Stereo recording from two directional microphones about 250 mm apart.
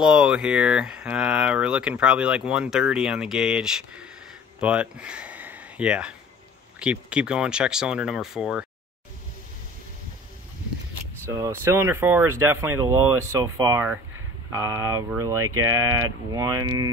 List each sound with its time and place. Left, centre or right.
0.0 s speech: centre
11.2 s speech: centre
15.3 s speech: right
16.3 s speech: centre